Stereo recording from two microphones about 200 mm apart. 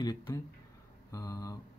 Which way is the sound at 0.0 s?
20° left (ahead or behind).